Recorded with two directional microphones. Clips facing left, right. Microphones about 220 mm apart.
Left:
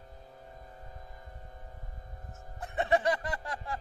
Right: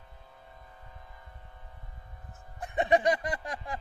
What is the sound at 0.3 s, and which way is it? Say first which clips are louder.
Music: left 3 dB; 40° left (ahead or behind).